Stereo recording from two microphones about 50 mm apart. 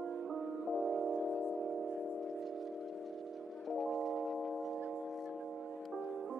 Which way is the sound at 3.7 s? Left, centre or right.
Centre.